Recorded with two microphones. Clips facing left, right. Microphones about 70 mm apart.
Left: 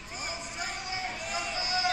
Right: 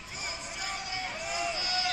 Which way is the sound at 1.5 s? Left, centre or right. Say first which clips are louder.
Left 3 dB; left.